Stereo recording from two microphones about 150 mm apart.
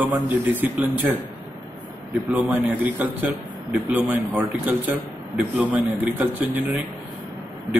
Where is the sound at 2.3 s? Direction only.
10° right (ahead or behind).